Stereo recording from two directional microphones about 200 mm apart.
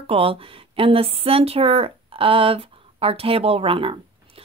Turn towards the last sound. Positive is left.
turn(degrees=-25)  # may be behind; listen again after turning